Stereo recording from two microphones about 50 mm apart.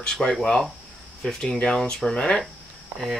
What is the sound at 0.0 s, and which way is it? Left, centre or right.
Speech, centre.